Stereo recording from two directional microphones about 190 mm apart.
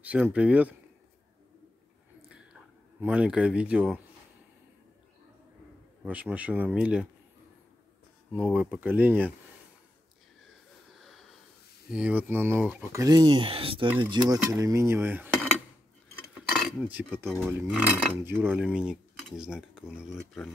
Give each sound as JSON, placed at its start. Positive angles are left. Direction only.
{"t": 0.0, "sound": "speech", "side_deg": -10}
{"t": 3.0, "sound": "speech", "side_deg": -5}
{"t": 6.0, "sound": "speech", "side_deg": -5}
{"t": 8.5, "sound": "speech", "side_deg": -5}
{"t": 11.9, "sound": "speech", "side_deg": -5}
{"t": 16.3, "sound": "cutlery", "side_deg": 0}
{"t": 17.5, "sound": "speech", "side_deg": -10}
{"t": 20.2, "sound": "speech", "side_deg": 5}